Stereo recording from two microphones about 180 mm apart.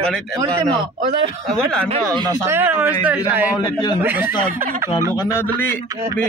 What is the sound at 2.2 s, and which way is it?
Speech, 15° right (ahead or behind).